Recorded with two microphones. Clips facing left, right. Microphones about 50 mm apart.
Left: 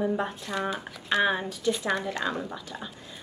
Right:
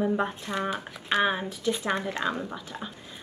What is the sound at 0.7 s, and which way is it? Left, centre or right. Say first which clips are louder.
Speech: even; right.